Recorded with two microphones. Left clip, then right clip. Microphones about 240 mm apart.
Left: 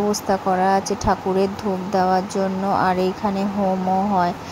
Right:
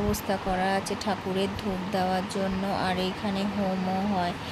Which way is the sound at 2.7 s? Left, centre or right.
Left.